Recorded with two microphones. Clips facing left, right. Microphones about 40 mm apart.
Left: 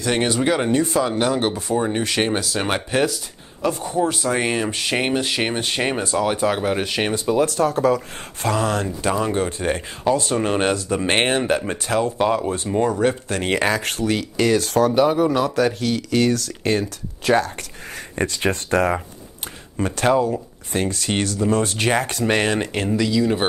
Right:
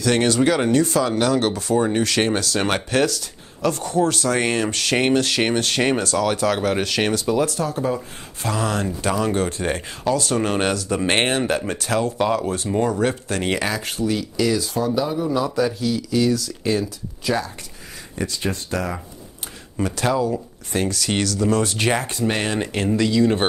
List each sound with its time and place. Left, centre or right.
0.0 s speech: centre
6.0 s speech: left
7.2 s speech: left
7.4 s speech: left
9.0 s speech: left
13.7 s speech: left
22.9 s speech: centre